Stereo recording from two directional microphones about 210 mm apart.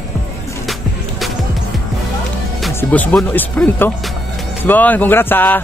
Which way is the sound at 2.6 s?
5° left (ahead or behind).